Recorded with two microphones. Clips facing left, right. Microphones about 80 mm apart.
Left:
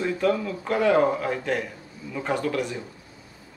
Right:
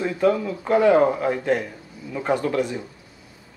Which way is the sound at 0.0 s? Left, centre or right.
Centre.